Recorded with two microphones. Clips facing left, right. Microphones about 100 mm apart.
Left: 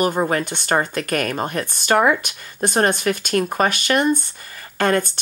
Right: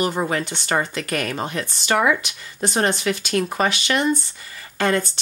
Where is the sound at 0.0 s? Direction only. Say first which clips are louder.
Left 3 dB; 50° left (ahead or behind).